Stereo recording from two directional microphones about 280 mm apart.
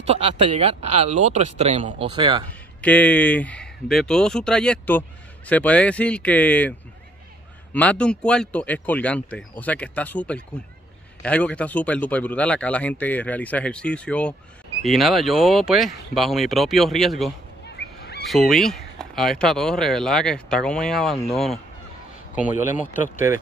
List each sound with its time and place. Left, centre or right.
0.0 s speech: right
2.8 s speech: centre
7.7 s speech: centre
17.6 s a sound: left
18.3 s speech: centre